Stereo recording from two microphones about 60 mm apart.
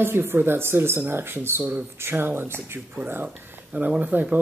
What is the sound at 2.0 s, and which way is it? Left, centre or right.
Speech, right.